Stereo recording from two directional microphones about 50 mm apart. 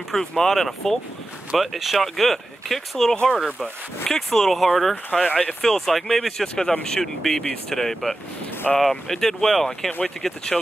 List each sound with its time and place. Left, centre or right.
0.1 s speech: centre
3.3 s speech: centre
4.0 s speech: centre